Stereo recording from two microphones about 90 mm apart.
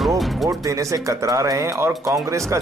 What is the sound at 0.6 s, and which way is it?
A man's voice, 35° right (ahead or behind).